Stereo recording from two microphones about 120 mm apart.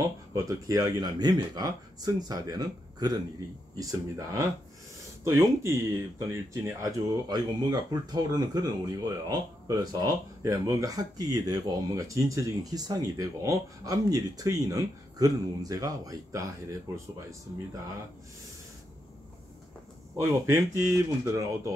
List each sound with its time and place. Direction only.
0.3 s speech: 30° right (ahead or behind)
20.2 s speech: 25° right (ahead or behind)